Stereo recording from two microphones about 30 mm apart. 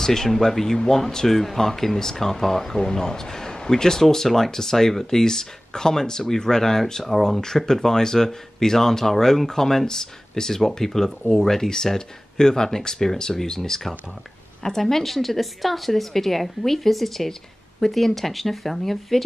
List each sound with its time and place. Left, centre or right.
0.0 s a woman's voice: centre